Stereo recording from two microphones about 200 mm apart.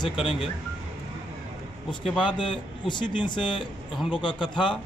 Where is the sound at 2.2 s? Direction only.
25° left (ahead or behind).